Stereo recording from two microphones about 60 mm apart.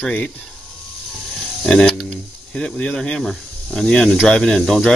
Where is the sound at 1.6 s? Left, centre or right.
Centre.